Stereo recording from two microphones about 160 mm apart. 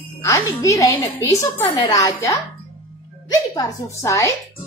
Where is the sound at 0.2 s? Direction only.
20° left (ahead or behind).